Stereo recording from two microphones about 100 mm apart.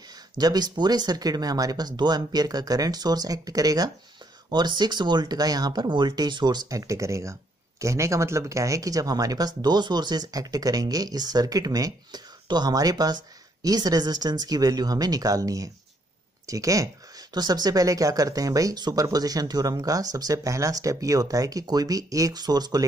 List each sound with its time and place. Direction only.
0.4 s speech: 40° right (ahead or behind)